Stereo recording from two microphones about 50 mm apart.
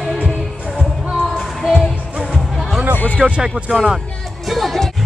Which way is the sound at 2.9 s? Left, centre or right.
Left.